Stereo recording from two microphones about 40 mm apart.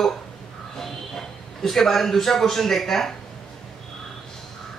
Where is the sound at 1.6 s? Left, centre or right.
Centre.